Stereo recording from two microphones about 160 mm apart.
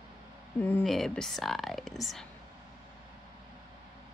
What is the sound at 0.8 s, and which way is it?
A woman's voice, centre (ahead or behind).